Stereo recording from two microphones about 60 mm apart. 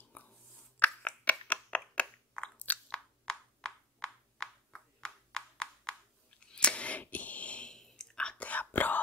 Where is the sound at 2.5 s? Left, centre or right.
Left.